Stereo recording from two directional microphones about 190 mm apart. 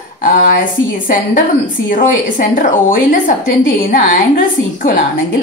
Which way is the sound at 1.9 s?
45° left (ahead or behind).